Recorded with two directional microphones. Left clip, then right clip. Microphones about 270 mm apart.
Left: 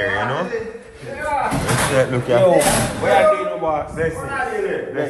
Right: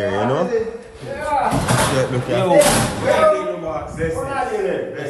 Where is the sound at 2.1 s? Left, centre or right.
Centre.